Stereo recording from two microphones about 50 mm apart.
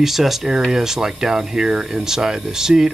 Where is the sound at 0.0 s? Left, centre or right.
Centre.